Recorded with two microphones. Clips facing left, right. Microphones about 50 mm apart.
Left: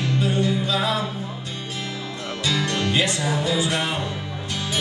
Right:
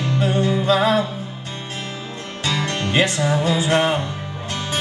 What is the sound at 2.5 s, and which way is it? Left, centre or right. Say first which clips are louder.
Music: right 1 dB; right.